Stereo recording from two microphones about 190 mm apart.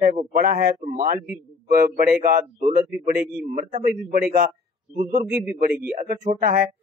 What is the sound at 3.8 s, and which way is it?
Speech, 50° right (ahead or behind).